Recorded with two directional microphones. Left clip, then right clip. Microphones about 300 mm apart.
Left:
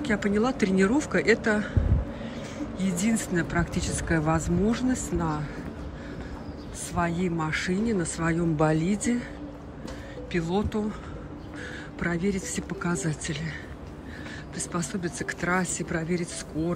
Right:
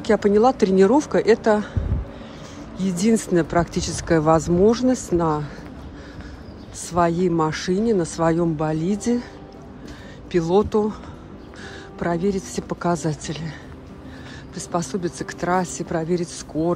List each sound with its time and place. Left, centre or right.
0.0 s speech: centre
2.8 s speech: centre
6.9 s speech: centre
10.3 s speech: centre
12.0 s speech: centre